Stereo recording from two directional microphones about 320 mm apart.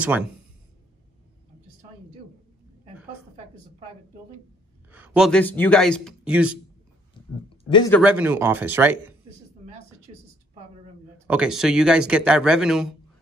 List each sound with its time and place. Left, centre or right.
4.9 s a man's voice: centre
7.7 s speech: centre
8.0 s speech: centre
9.8 s a sound: centre
11.2 s speech: centre